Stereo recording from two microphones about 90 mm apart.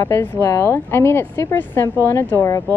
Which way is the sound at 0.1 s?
25° left (ahead or behind).